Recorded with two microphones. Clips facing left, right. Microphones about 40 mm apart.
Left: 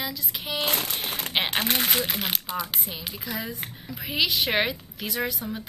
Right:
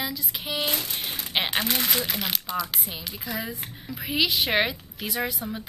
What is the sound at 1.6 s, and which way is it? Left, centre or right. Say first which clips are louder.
Speech: left 1 dB; left.